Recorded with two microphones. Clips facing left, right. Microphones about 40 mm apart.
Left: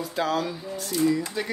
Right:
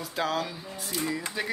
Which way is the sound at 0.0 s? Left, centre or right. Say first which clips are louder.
Left 3 dB; centre.